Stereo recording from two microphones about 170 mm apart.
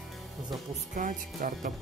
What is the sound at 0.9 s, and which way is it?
Speech, 50° right (ahead or behind).